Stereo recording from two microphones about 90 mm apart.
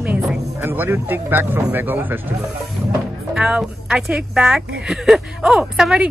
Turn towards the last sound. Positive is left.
turn(degrees=-5)  # may be behind; listen again after turning